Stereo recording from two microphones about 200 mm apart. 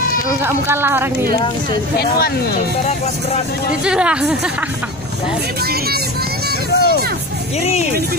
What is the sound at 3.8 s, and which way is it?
Speech, 5° right (ahead or behind).